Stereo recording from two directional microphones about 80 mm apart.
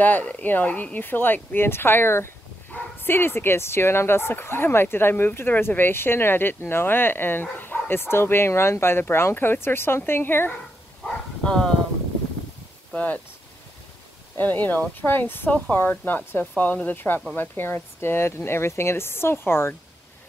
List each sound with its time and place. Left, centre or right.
0.0 s speech: centre
11.1 s bow-wow: centre
12.9 s speech: centre
14.3 s speech: left